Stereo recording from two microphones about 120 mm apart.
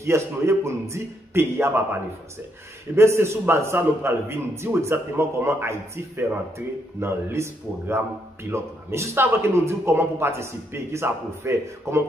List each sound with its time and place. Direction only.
0.0 s a man's voice: 20° right (ahead or behind)
3.0 s a man's voice: 20° right (ahead or behind)
8.5 s a man's voice: 20° right (ahead or behind)